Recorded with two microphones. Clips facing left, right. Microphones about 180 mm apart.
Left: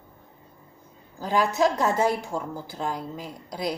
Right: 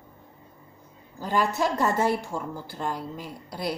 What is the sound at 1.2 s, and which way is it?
A woman's voice, 10° left (ahead or behind).